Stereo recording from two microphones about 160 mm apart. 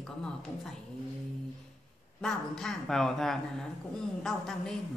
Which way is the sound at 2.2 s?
5° left (ahead or behind).